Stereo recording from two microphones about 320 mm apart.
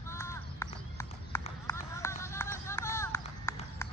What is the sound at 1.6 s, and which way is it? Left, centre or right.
Run, centre.